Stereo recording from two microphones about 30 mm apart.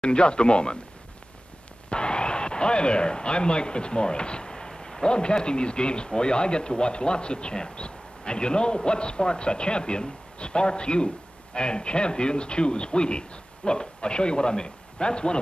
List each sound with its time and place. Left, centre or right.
0.0 s a man's voice: left
1.9 s speech: left
4.5 s a man's voice: centre